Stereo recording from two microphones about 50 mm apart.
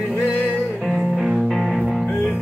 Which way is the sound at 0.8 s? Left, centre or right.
Centre.